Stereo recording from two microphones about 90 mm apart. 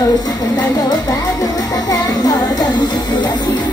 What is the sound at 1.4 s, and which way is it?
Music, 45° left (ahead or behind).